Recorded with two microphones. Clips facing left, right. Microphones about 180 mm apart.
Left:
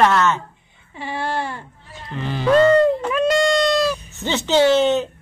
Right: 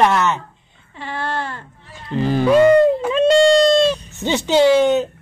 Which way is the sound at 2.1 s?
40° right (ahead or behind).